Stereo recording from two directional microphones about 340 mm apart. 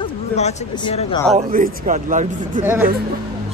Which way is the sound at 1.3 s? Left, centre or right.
Right.